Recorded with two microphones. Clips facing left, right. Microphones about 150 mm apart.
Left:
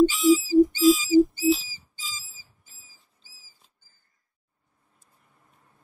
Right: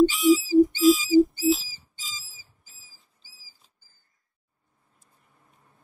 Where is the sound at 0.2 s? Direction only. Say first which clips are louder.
Even; 20° right (ahead or behind).